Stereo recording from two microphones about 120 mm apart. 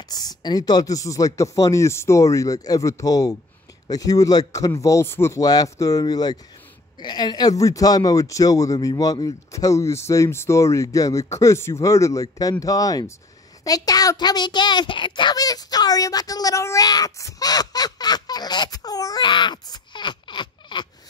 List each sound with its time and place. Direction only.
0.1 s a child's voice: 35° left (ahead or behind)